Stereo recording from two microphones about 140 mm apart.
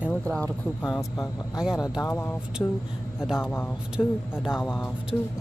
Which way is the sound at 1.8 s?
25° left (ahead or behind).